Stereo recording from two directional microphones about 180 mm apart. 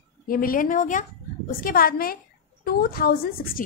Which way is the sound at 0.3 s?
50° left (ahead or behind).